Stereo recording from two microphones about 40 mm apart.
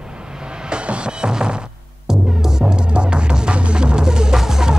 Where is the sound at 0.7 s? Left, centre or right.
Right.